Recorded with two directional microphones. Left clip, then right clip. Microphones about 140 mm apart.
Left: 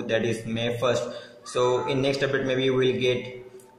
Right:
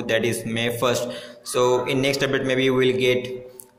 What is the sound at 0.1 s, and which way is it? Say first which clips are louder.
Speech: right 4 dB; 15° right (ahead or behind).